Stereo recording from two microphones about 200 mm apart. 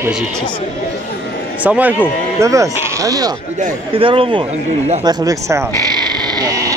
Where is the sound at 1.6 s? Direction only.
5° right (ahead or behind).